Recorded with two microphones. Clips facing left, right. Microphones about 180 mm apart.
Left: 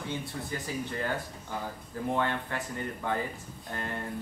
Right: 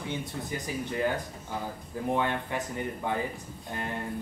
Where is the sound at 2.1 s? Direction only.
15° right (ahead or behind).